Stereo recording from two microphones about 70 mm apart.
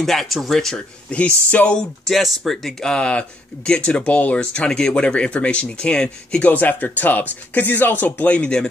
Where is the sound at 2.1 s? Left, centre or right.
Centre.